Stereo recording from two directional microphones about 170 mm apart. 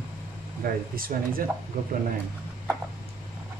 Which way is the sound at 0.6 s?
65° right (ahead or behind).